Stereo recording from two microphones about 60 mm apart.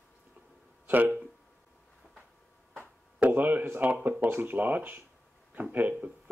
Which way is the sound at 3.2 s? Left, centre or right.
Right.